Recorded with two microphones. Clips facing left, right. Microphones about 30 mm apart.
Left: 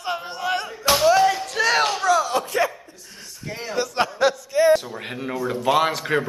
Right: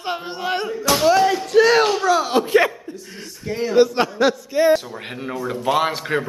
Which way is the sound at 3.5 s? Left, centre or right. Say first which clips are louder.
Right 10 dB; centre.